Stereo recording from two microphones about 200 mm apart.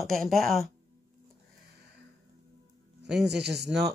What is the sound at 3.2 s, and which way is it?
Speech, 55° right (ahead or behind).